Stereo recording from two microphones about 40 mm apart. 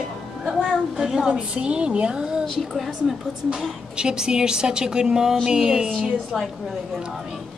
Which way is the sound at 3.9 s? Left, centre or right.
Right.